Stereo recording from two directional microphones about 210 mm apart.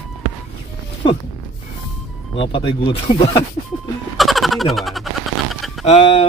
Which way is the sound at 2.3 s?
25° left (ahead or behind).